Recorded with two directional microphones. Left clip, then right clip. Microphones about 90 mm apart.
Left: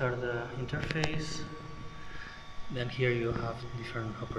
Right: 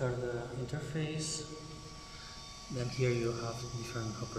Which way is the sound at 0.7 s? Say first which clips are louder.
Left 6 dB; 45° right (ahead or behind).